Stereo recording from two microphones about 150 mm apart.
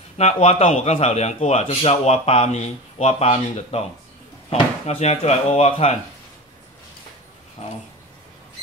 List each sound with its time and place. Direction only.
0.2 s a man's voice: 45° left (ahead or behind)
7.6 s a man's voice: 45° left (ahead or behind)